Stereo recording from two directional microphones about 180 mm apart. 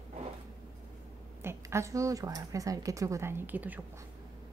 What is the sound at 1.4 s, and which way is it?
A woman's voice, 15° right (ahead or behind).